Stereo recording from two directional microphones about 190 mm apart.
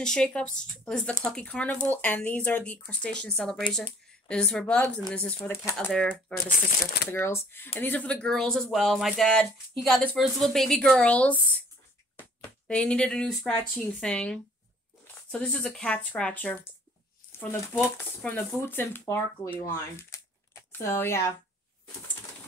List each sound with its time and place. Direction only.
0.0 s speech: 5° left (ahead or behind)
6.4 s speech: 55° left (ahead or behind)
7.1 s speech: 10° left (ahead or behind)
17.3 s a sound: 10° left (ahead or behind)
17.9 s speech: 10° left (ahead or behind)